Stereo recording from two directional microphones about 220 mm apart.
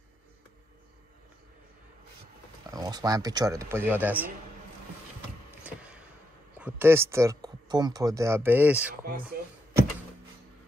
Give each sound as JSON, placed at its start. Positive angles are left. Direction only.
{"t": 2.7, "sound": "speech", "side_deg": -15}
{"t": 5.6, "sound": "a sound", "side_deg": -5}
{"t": 6.6, "sound": "speech", "side_deg": -10}